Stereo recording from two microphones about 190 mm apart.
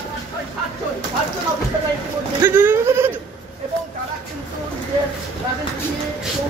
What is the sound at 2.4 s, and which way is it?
Goat, 10° right (ahead or behind).